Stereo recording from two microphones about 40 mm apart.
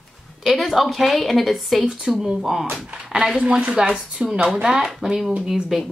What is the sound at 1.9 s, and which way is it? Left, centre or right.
Speech, right.